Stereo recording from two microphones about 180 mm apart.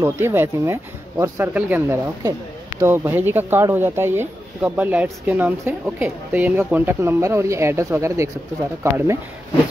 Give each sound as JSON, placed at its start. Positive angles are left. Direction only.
{"t": 0.0, "sound": "speech", "side_deg": -15}